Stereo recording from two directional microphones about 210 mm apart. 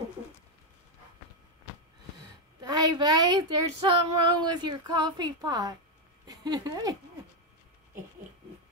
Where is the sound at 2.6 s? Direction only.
20° right (ahead or behind).